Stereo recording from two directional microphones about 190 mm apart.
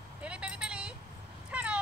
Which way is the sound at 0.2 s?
5° right (ahead or behind).